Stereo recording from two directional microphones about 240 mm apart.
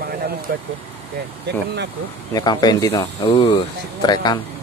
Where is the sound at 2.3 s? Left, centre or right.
Centre.